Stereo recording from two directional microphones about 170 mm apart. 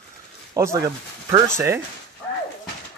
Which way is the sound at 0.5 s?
15° right (ahead or behind).